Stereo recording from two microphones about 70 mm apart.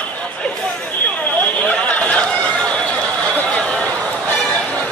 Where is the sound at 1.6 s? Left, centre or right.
Left.